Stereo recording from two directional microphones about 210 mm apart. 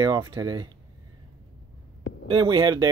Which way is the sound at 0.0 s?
20° right (ahead or behind).